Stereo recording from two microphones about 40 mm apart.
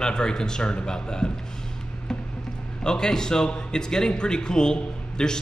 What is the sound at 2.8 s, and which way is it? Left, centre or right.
A man's voice, centre.